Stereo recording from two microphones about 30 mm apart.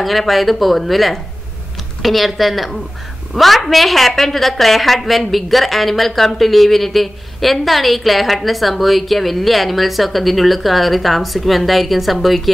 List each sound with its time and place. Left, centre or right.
0.0 s a woman's voice: centre